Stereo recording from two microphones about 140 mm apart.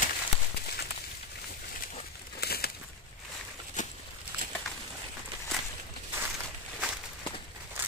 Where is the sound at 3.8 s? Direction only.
65° left (ahead or behind).